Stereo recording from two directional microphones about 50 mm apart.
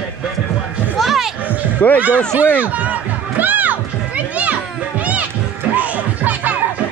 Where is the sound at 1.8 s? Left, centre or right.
Left.